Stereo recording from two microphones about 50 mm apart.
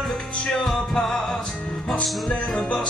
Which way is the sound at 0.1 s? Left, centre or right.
Centre.